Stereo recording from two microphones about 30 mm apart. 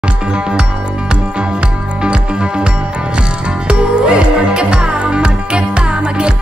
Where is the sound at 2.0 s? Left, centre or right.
Right.